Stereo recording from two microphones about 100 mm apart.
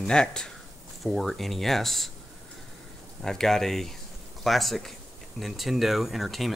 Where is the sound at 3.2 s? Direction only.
5° left (ahead or behind).